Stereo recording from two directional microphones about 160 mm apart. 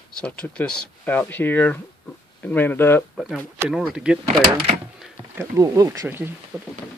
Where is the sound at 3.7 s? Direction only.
5° right (ahead or behind).